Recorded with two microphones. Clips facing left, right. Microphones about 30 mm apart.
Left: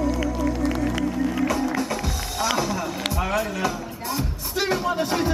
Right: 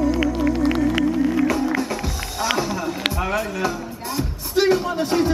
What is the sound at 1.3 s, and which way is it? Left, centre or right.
Music, centre.